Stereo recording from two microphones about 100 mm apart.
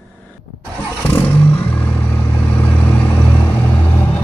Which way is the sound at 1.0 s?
20° left (ahead or behind).